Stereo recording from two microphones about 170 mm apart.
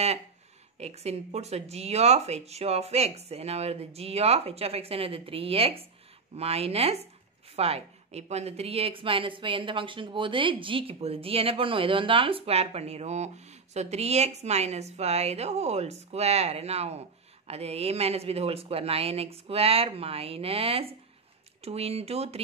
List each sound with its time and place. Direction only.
0.7 s speech: 40° right (ahead or behind)